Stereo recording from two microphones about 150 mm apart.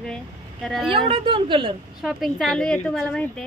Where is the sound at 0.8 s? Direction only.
35° right (ahead or behind).